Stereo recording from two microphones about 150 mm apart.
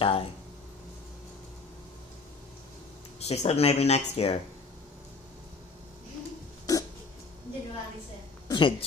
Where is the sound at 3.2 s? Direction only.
45° left (ahead or behind).